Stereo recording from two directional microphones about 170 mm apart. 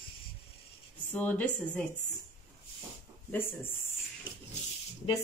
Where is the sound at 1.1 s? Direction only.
10° left (ahead or behind).